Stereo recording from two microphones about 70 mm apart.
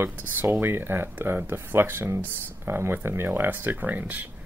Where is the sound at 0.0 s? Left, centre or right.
Right.